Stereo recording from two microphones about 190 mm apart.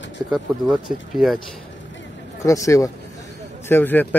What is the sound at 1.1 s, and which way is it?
Speech, centre (ahead or behind).